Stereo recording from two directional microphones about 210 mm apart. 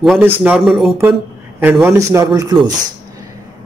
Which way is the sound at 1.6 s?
10° right (ahead or behind).